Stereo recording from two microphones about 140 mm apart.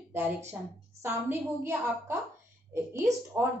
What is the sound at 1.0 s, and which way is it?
A woman's voice, 15° right (ahead or behind).